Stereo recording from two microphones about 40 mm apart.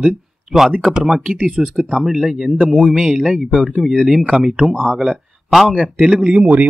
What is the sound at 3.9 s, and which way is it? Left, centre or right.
Speech, centre.